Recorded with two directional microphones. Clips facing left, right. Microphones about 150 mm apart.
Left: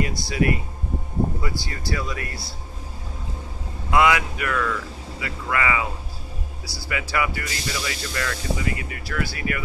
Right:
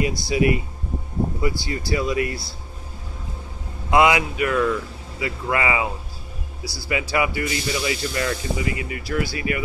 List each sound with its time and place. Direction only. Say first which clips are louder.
0.0 s speech: right 3 dB; 15° right (ahead or behind)
3.9 s speech: right 2 dB; 20° right (ahead or behind)
6.9 s speech: right 3 dB; 20° right (ahead or behind)